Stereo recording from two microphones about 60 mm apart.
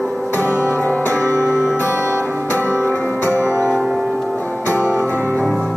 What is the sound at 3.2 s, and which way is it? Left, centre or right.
Music, left.